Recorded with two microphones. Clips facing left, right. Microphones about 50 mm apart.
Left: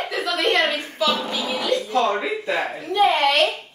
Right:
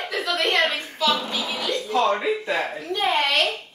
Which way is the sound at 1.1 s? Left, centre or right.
Centre.